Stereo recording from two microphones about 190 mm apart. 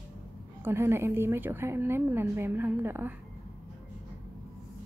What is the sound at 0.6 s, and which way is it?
A woman's voice, 15° right (ahead or behind).